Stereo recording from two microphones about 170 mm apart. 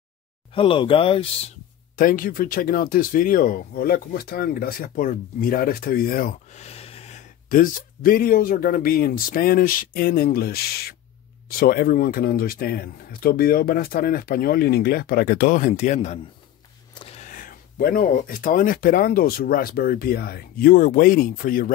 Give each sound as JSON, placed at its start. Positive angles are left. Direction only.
{"t": 0.6, "sound": "speech", "side_deg": 30}
{"t": 2.0, "sound": "speech", "side_deg": 55}
{"t": 6.5, "sound": "speech", "side_deg": 35}
{"t": 16.9, "sound": "a sound", "side_deg": 30}
{"t": 17.2, "sound": "speech", "side_deg": 50}